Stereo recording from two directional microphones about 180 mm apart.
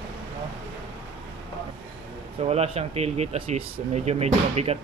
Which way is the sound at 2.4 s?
35° right (ahead or behind).